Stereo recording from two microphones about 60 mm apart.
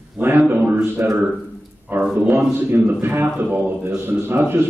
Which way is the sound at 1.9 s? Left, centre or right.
Right.